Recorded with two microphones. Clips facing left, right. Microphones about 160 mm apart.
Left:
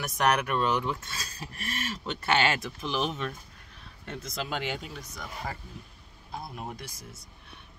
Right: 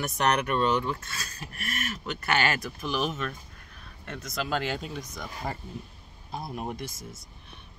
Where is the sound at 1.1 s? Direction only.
30° left (ahead or behind).